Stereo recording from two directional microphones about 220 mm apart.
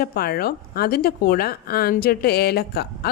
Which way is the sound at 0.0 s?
45° left (ahead or behind).